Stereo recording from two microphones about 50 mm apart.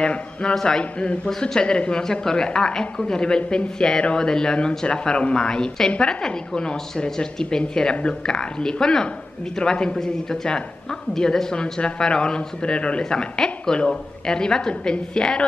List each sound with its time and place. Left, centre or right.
0.0 s speech: centre